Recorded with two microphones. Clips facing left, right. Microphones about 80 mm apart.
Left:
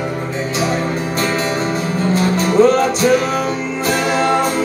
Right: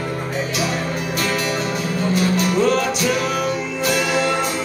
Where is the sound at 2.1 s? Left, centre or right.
Left.